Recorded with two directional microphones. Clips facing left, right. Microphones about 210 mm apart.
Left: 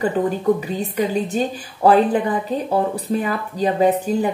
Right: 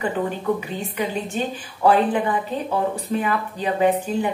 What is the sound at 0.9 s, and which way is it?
Speech, 40° left (ahead or behind).